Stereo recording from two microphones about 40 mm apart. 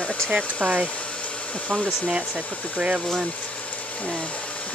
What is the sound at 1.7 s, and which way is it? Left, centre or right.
Speech, left.